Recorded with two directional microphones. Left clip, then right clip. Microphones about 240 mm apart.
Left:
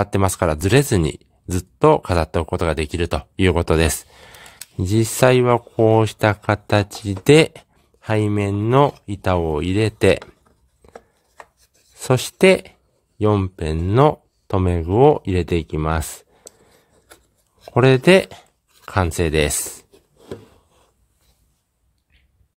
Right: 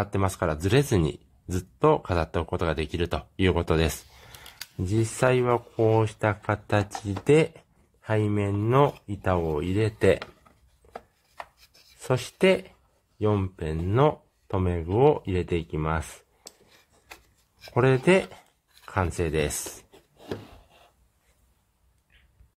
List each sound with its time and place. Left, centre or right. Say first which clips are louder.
0.0 s speech: left 8 dB; left
12.0 s speech: left 8 dB; left
17.7 s speech: left 8 dB; left